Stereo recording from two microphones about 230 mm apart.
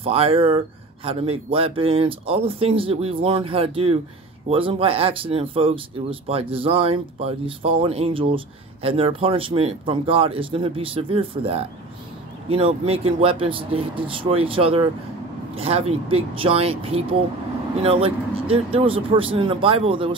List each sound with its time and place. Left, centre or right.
0.0 s speech: right